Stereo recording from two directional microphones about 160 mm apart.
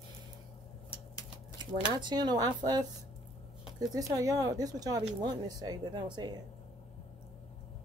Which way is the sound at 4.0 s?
20° right (ahead or behind).